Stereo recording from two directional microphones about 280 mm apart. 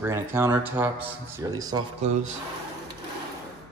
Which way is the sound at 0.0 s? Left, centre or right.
Centre.